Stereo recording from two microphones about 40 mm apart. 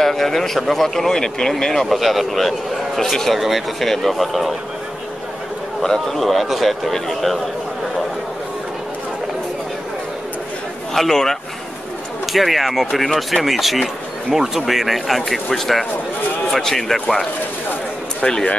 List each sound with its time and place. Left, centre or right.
0.0 s a man's voice: centre
1.9 s speech: centre
5.8 s speech: centre
10.9 s speech: centre
12.3 s speech: centre
18.2 s speech: left